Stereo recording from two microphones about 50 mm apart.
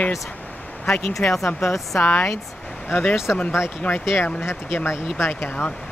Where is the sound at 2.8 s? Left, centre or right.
Left.